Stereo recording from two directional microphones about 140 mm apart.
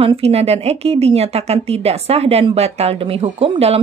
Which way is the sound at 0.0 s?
45° right (ahead or behind).